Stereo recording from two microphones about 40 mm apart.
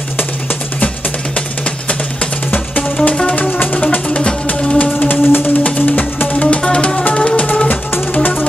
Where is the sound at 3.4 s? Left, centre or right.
Left.